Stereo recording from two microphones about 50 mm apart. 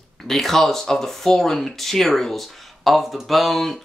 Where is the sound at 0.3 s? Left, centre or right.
Centre.